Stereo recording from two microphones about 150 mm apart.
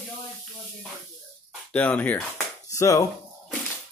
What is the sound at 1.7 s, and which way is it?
Speech, 10° left (ahead or behind).